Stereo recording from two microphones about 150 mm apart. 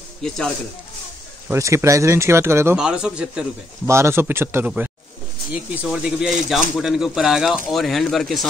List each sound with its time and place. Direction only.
1.5 s speech: 20° right (ahead or behind)
2.8 s speech: 5° right (ahead or behind)
3.8 s speech: 20° right (ahead or behind); by 8.5 s centre (ahead or behind)